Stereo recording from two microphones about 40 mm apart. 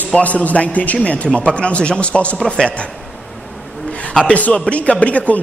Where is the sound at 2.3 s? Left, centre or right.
Centre.